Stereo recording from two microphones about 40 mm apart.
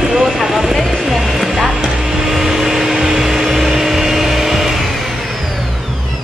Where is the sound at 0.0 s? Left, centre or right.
Centre.